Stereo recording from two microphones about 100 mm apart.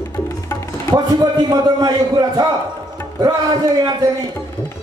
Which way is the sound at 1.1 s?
40° right (ahead or behind).